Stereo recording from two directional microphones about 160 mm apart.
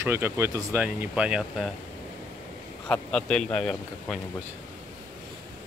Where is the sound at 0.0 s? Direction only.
15° right (ahead or behind).